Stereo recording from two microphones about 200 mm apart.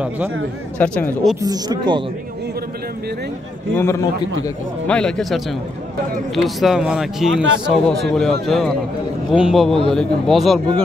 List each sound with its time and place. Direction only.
0.7 s a man's voice: 5° left (ahead or behind)
1.4 s speech: 20° right (ahead or behind)
3.7 s a man's voice: 15° left (ahead or behind)